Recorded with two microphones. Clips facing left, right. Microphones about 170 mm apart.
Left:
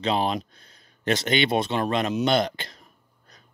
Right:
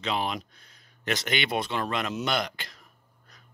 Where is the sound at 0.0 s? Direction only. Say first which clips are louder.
Left 5 dB; 30° left (ahead or behind).